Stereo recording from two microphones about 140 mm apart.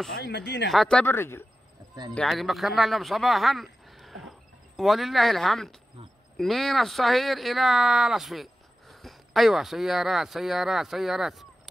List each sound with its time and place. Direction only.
0.7 s speech: centre (ahead or behind)
1.0 s speech: 15° left (ahead or behind)
2.1 s speech: centre (ahead or behind)